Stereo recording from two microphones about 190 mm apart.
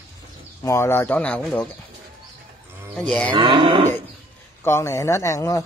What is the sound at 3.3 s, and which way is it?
Wild animals, 25° right (ahead or behind).